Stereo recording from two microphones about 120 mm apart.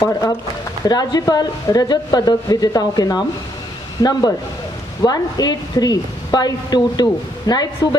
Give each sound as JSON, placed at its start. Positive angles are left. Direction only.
{"t": 0.8, "sound": "a woman's voice", "side_deg": 35}